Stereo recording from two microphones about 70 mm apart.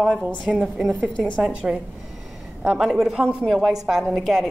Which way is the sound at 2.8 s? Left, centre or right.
Centre.